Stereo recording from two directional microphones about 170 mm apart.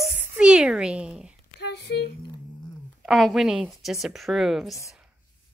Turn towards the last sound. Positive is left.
turn(degrees=0)  # may be behind; listen again after turning